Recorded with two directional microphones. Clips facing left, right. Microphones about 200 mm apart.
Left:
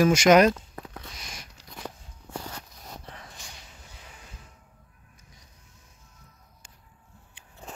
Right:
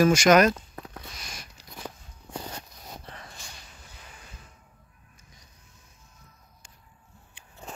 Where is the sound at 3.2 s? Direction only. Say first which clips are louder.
Right 1 dB; 15° left (ahead or behind).